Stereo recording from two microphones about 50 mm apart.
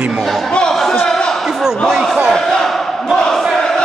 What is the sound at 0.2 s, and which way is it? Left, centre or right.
Chatter, centre.